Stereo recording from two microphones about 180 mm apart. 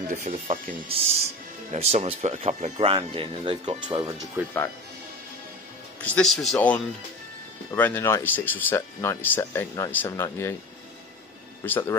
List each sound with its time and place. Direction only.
0.1 s speech: 40° right (ahead or behind); by 4.1 s 25° right (ahead or behind)
4.4 s speech: 10° right (ahead or behind)
6.0 s speech: 5° left (ahead or behind)
11.6 s speech: 10° left (ahead or behind)